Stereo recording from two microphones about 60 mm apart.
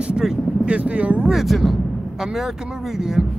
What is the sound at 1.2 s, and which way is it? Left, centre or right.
Speech, centre.